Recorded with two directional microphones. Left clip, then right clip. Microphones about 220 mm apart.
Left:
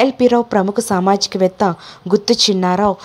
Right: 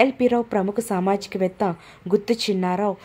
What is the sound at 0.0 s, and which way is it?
A woman's voice, 20° left (ahead or behind).